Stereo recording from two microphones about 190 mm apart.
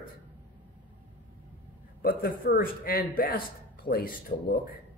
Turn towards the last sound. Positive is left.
turn(degrees=50)  # may be behind; listen again after turning